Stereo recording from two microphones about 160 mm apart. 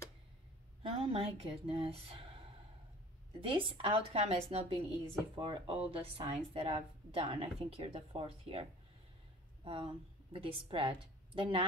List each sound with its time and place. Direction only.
0.8 s speech: 35° right (ahead or behind)
3.4 s speech: 35° right (ahead or behind)
9.7 s a woman's voice: 35° right (ahead or behind)